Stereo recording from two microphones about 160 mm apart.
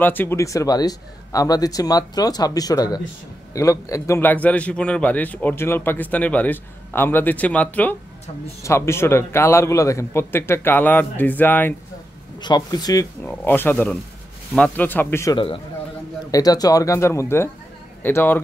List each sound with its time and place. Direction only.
0.0 s a man's voice: 10° left (ahead or behind)
12.4 s a man's voice: 25° left (ahead or behind)
13.2 s a man's voice: 10° left (ahead or behind)
15.3 s a man's voice: 35° left (ahead or behind)
16.3 s a man's voice: 25° left (ahead or behind)